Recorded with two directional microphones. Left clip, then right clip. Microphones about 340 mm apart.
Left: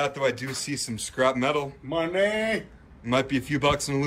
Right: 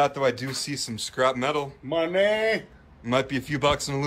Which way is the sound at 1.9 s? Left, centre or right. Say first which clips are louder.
Right 2 dB; right.